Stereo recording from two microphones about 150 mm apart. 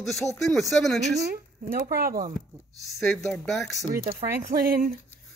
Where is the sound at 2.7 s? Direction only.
Centre (ahead or behind).